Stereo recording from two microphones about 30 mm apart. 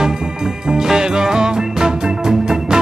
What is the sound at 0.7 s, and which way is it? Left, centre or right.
Music, right.